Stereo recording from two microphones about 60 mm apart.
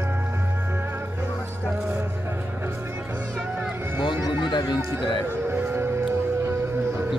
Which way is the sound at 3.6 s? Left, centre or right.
Right.